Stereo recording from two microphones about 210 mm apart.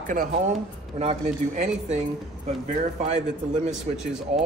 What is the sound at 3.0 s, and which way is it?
Speech, 30° right (ahead or behind).